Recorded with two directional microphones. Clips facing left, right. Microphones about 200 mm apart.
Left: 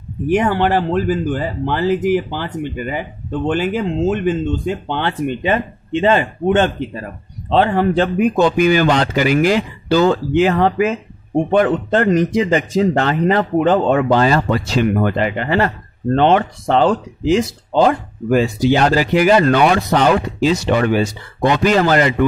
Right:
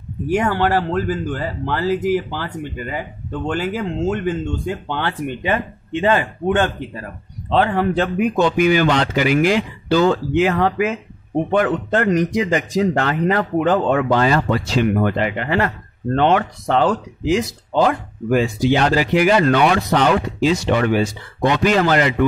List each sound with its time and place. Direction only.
0.3 s speech: 20° left (ahead or behind); by 22.1 s 40° left (ahead or behind)